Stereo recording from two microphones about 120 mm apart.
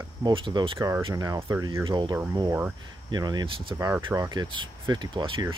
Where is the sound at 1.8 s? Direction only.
40° right (ahead or behind).